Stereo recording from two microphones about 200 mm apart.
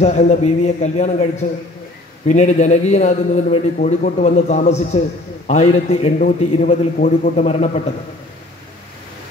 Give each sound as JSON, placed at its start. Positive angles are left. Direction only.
{"t": 0.0, "sound": "a man's voice", "side_deg": 35}